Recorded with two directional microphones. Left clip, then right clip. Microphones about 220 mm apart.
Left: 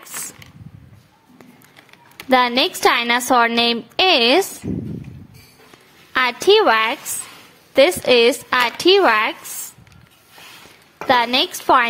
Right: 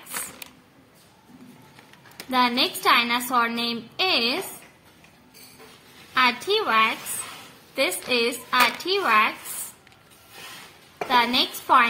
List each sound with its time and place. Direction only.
2.3 s a woman's voice: 45° left (ahead or behind)
6.1 s speech: 40° left (ahead or behind)
11.1 s speech: 45° left (ahead or behind)